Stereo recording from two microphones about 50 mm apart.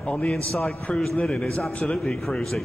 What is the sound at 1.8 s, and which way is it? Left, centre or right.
Speech, centre.